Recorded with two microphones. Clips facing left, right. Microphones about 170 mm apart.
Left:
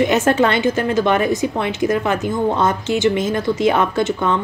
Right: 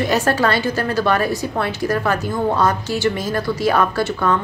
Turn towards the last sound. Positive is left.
turn(degrees=20)  # may be behind; listen again after turning